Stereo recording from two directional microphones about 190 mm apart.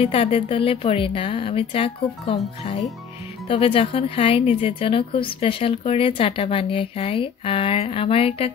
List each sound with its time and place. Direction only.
0.0 s speech: 30° left (ahead or behind)